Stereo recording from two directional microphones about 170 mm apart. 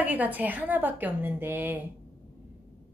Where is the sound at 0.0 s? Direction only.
10° right (ahead or behind).